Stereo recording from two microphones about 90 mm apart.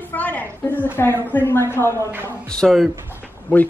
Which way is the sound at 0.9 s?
25° left (ahead or behind).